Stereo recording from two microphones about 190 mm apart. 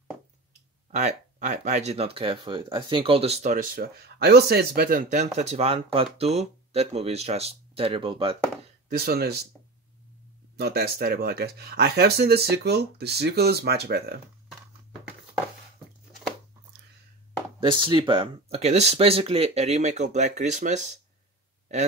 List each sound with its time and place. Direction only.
0.9 s speech: 35° right (ahead or behind)
8.8 s speech: 55° right (ahead or behind)
10.6 s speech: 55° right (ahead or behind)
17.6 s speech: 25° right (ahead or behind)